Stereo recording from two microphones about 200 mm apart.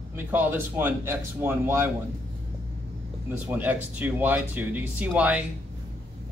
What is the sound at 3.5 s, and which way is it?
Speech, 10° right (ahead or behind).